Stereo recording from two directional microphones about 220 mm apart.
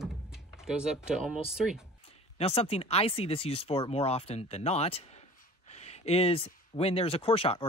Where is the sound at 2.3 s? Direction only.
25° left (ahead or behind).